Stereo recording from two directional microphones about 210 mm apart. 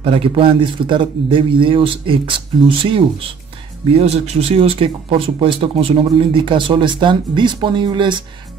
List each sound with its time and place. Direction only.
0.0 s speech: 25° right (ahead or behind)